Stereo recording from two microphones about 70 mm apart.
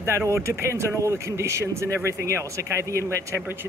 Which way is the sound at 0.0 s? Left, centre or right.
Right.